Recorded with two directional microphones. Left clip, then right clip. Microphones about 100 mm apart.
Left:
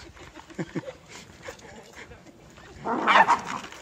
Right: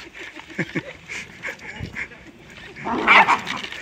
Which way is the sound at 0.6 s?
10° left (ahead or behind).